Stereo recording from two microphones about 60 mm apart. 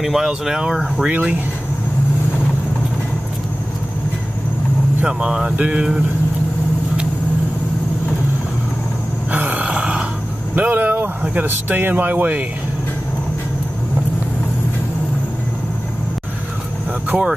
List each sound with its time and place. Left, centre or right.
0.0 s speech: centre
5.0 s speech: centre
9.3 s a sound: right
10.5 s vehicle: right
11.4 s speech: right
17.1 s speech: right